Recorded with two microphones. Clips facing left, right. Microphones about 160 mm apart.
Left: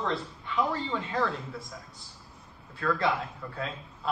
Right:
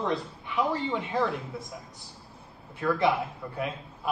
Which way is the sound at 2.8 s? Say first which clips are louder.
Right 3 dB; 20° right (ahead or behind).